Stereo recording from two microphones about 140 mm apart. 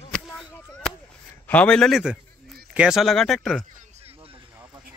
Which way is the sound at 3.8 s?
45° right (ahead or behind).